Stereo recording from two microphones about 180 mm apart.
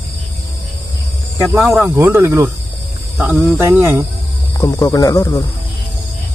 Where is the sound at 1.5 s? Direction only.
10° right (ahead or behind).